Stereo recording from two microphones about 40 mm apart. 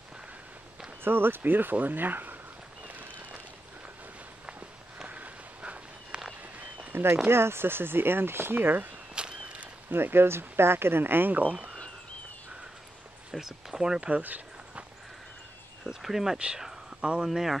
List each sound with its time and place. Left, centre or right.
1.0 s speech: right
2.9 s a sound: right
5.0 s walk: right
6.9 s a sound: right
7.2 s speech: right
9.1 s a sound: right
9.8 s speech: right
13.4 s speech: centre
16.0 s speech: centre
17.0 s speech: right
17.3 s speech: centre